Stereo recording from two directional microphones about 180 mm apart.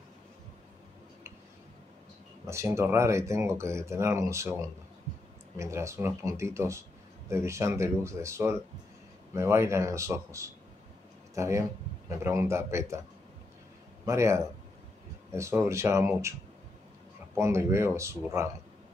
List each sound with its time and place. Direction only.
2.4 s speech: 15° right (ahead or behind)
14.0 s speech: 15° right (ahead or behind)
17.4 s speech: 15° right (ahead or behind)